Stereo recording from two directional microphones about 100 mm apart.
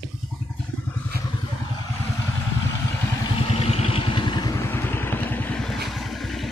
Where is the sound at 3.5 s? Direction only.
75° left (ahead or behind); by 4.5 s 50° left (ahead or behind).